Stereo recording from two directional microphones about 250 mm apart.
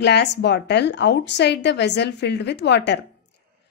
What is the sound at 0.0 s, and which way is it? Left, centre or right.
A woman's voice, left.